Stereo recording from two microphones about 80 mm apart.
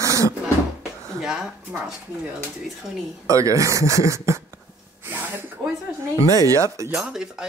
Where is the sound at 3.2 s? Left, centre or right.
Right.